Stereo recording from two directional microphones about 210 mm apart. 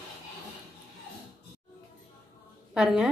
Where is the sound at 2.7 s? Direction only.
5° right (ahead or behind).